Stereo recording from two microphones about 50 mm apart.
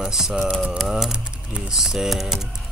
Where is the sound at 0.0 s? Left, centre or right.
Centre.